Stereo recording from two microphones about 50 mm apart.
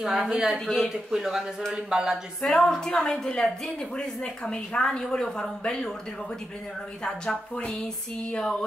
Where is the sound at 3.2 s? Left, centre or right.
Centre.